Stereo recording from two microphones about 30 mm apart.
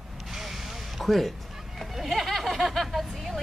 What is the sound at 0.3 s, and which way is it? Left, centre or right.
Vehicle, centre.